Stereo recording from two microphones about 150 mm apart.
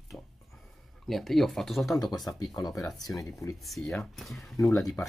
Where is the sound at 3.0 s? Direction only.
20° left (ahead or behind).